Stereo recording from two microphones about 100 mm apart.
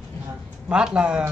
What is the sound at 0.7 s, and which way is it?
Speech, 10° right (ahead or behind).